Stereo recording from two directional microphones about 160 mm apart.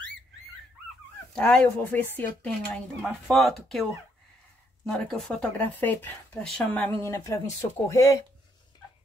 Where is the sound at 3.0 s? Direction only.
Centre (ahead or behind); by 8.1 s 20° left (ahead or behind).